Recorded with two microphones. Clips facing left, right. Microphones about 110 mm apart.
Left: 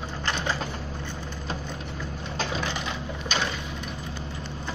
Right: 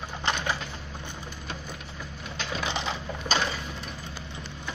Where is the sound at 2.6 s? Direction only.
25° right (ahead or behind).